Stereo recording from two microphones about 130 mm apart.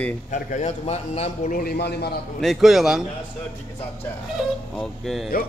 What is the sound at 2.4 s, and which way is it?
Speech, centre (ahead or behind).